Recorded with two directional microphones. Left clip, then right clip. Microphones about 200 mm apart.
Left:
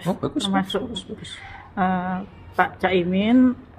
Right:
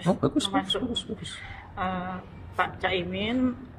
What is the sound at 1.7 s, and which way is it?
A woman's voice, 40° left (ahead or behind).